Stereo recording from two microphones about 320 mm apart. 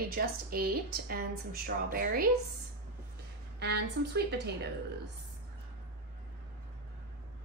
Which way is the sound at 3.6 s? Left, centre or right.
Right.